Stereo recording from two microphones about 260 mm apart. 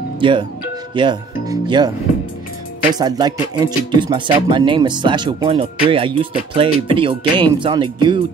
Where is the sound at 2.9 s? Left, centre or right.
Centre.